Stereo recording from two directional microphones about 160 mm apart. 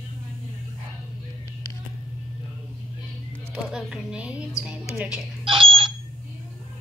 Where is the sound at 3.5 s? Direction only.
5° right (ahead or behind).